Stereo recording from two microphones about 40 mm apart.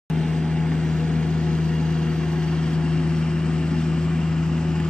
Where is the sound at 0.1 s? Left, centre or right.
Centre.